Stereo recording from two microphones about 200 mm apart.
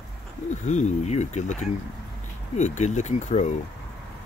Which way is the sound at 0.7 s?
35° left (ahead or behind).